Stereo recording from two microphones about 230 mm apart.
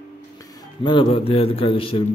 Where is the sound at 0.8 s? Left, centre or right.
Left.